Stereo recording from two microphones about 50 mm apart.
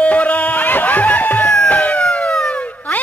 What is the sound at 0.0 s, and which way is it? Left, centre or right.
Music, left.